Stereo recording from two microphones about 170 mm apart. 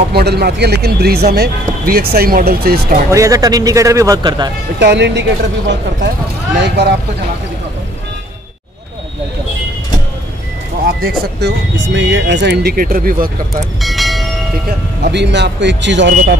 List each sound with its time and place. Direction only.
0.1 s speech: 70° right (ahead or behind)
3.1 s a man's voice: 20° right (ahead or behind)
4.7 s speech: 90° right
6.5 s speech: 85° right
10.9 s speech: 75° right (ahead or behind); by 13.6 s 60° right (ahead or behind)
13.7 s bell: centre (ahead or behind)
15.0 s speech: 85° right